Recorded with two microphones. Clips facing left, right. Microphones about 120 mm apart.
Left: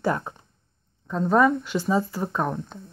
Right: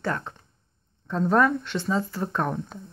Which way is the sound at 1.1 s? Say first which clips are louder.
Left 2 dB; centre (ahead or behind).